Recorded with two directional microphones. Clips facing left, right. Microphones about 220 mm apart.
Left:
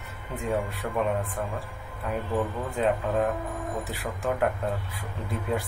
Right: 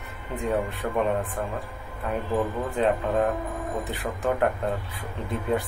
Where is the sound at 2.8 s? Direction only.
5° left (ahead or behind).